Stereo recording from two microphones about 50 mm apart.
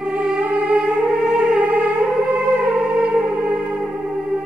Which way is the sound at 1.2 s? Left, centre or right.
Centre.